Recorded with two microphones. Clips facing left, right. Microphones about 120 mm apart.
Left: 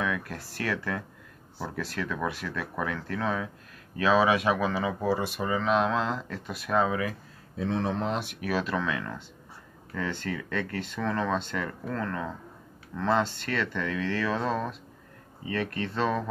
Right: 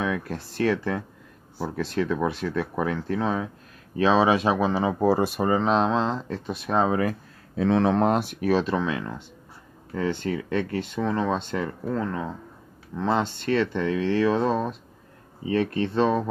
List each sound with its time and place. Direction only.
0.0 s speech: 25° right (ahead or behind)
5.0 s speech: 45° right (ahead or behind); by 6.9 s 25° right (ahead or behind)
6.9 s speech: 45° right (ahead or behind)
7.5 s speech: 90° right; by 8.2 s 65° right (ahead or behind)
8.2 s speech: 35° right (ahead or behind)